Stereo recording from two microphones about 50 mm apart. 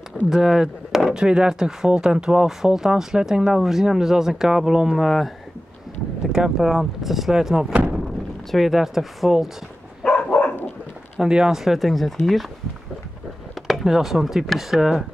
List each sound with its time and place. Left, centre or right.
0.3 s speech: centre
6.3 s speech: centre
10.0 s dog: left
11.1 s speech: centre
13.6 s speech: centre